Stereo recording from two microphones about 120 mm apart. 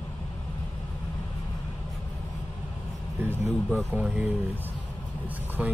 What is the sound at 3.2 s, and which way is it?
Vehicle, 20° right (ahead or behind).